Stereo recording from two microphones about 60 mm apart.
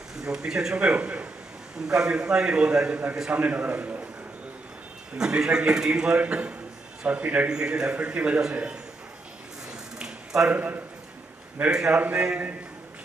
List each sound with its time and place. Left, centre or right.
0.1 s a man's voice: centre
5.1 s a man's voice: centre
7.4 s a man's voice: centre
9.9 s a sound: centre
10.5 s a man's voice: right
11.7 s a man's voice: centre